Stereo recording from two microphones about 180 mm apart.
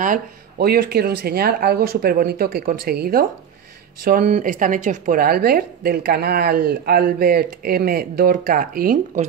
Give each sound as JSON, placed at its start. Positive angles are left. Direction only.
{"t": 0.0, "sound": "speech", "side_deg": -55}